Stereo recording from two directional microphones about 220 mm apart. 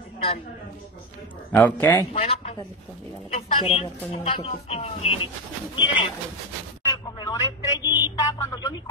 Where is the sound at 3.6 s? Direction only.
25° left (ahead or behind).